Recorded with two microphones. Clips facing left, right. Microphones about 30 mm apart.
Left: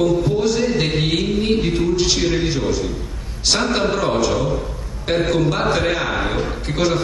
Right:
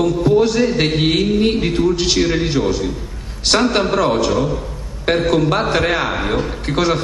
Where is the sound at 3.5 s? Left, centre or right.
Right.